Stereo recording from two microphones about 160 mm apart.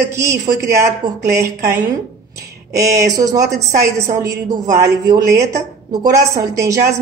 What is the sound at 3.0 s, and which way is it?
Speech, 20° right (ahead or behind).